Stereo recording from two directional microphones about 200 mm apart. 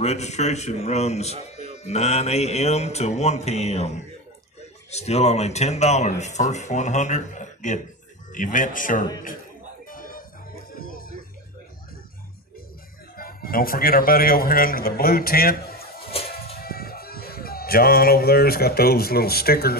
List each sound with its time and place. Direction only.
0.0 s speech: 35° left (ahead or behind)
4.9 s speech: 35° left (ahead or behind)
9.8 s music: 45° left (ahead or behind)
13.1 s a man's voice: 45° left (ahead or behind)